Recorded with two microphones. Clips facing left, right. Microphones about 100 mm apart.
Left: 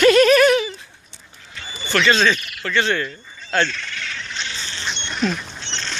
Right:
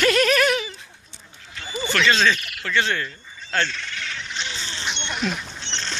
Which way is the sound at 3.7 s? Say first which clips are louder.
Left 1 dB; 20° right (ahead or behind).